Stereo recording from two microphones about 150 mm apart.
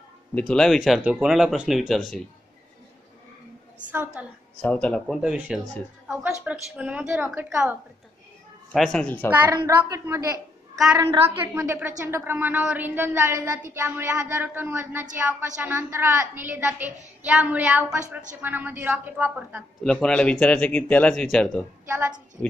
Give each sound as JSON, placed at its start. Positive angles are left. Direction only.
{"t": 0.3, "sound": "speech", "side_deg": 10}
{"t": 3.9, "sound": "a woman's voice", "side_deg": -10}
{"t": 4.6, "sound": "speech", "side_deg": 10}
{"t": 5.0, "sound": "a woman's voice", "side_deg": -5}
{"t": 8.7, "sound": "speech", "side_deg": 5}
{"t": 9.7, "sound": "a woman's voice", "side_deg": -20}
{"t": 11.5, "sound": "a woman's voice", "side_deg": -15}
{"t": 19.8, "sound": "speech", "side_deg": 5}
{"t": 21.8, "sound": "a woman's voice", "side_deg": -15}